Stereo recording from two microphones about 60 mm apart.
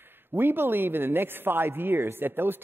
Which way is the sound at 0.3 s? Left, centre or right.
Right.